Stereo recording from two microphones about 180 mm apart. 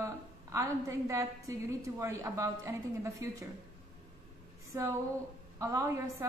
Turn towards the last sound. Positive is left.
turn(degrees=-15)  # may be behind; listen again after turning